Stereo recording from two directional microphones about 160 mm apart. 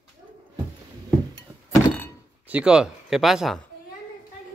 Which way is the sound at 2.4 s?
5° right (ahead or behind).